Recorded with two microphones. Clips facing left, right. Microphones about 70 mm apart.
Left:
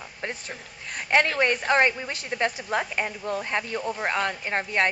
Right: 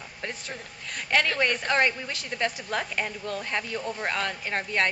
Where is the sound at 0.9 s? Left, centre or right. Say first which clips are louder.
Left 3 dB; left.